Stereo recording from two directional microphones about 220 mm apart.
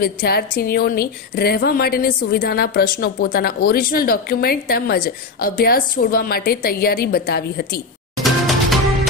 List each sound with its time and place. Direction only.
0.0 s a woman's voice: 45° left (ahead or behind)
8.2 s music: centre (ahead or behind)